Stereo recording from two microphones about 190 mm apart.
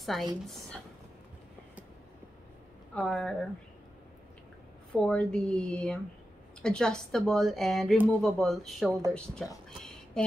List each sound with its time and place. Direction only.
0.0 s speech: centre (ahead or behind)
2.9 s speech: 5° left (ahead or behind)
4.9 s speech: 5° left (ahead or behind)